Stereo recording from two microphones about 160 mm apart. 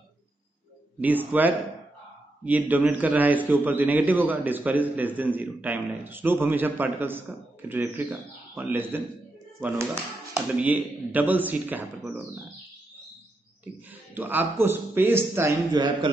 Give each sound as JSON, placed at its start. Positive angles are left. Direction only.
{"t": 1.0, "sound": "a man's voice", "side_deg": -10}
{"t": 10.3, "sound": "a man's voice", "side_deg": -10}
{"t": 13.8, "sound": "a man's voice", "side_deg": -10}
{"t": 15.7, "sound": "speech", "side_deg": -30}